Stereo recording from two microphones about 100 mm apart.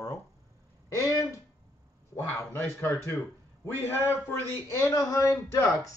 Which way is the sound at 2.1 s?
25° left (ahead or behind).